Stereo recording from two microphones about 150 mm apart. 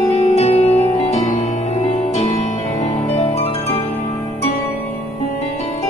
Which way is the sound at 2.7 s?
40° left (ahead or behind).